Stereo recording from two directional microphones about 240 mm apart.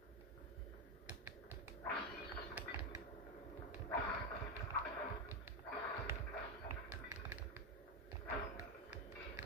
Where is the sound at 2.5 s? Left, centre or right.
Centre.